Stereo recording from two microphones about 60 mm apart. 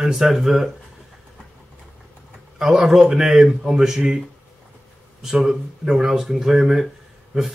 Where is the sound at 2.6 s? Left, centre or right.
Centre.